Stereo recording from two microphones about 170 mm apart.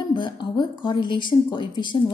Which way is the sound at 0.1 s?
30° left (ahead or behind).